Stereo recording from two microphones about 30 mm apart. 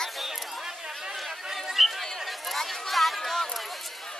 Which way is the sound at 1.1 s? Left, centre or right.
Centre.